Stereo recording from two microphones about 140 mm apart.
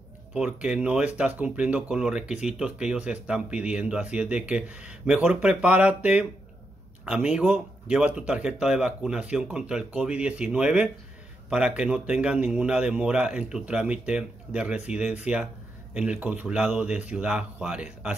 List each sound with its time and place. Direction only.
0.3 s speech: 5° right (ahead or behind)